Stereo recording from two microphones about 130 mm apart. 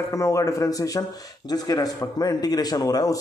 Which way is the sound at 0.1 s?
25° left (ahead or behind).